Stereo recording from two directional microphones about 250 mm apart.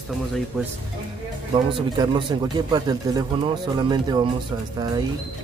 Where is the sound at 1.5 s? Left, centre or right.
Right.